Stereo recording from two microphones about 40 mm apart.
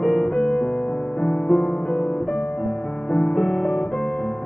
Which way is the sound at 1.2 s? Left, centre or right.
Centre.